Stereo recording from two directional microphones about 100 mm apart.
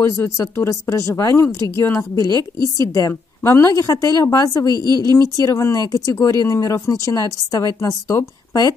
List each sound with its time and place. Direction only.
0.0 s speech: 30° left (ahead or behind)
4.7 s speech: 40° right (ahead or behind)
5.1 s speech: 35° left (ahead or behind)